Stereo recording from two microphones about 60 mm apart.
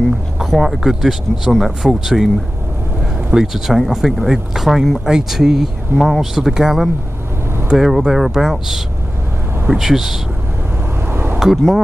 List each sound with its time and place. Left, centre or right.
0.4 s speech: centre
3.3 s speech: centre
11.1 s a sound: right
11.3 s speech: centre